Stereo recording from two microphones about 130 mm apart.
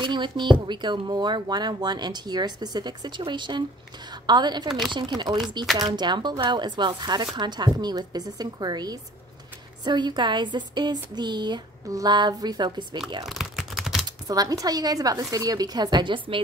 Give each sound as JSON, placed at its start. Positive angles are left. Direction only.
{"t": 0.0, "sound": "speech", "side_deg": -35}
{"t": 4.6, "sound": "speech", "side_deg": 0}
{"t": 4.9, "sound": "speech", "side_deg": -35}
{"t": 13.2, "sound": "typing", "side_deg": 0}
{"t": 14.0, "sound": "speech", "side_deg": -30}